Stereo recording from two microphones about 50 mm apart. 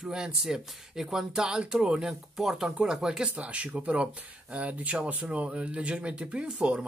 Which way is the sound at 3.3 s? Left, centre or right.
Right.